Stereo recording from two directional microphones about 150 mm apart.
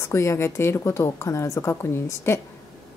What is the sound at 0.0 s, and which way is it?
Speech, 20° left (ahead or behind).